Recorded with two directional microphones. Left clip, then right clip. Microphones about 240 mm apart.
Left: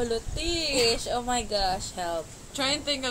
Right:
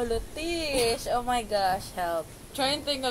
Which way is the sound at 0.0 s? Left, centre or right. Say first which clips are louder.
Left 1 dB; centre.